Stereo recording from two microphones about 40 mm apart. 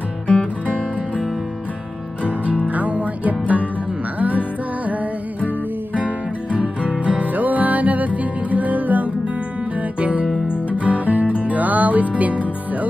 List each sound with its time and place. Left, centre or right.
2.7 s music: right
5.9 s music: right